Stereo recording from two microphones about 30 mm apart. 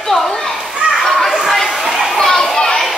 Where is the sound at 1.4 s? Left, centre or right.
Centre.